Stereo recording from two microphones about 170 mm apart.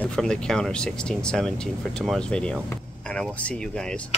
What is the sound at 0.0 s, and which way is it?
Speech, 5° left (ahead or behind).